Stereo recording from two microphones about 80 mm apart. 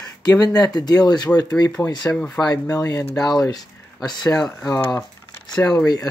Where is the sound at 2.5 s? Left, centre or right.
Left.